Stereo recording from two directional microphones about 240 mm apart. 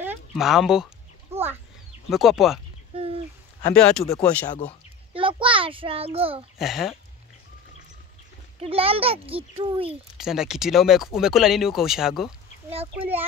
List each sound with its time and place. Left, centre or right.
0.0 s a sound: centre
2.0 s speech: centre
2.9 s a sound: right
3.7 s speech: centre
4.5 s speech: left
5.1 s a sound: right
6.6 s speech: centre
8.5 s a child's voice: right
10.1 s speech: centre